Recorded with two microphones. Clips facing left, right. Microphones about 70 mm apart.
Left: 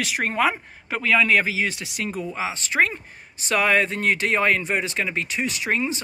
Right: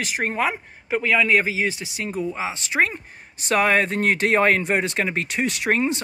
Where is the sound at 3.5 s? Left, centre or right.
Right.